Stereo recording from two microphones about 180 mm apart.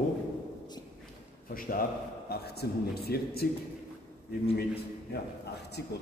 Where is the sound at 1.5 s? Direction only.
50° left (ahead or behind).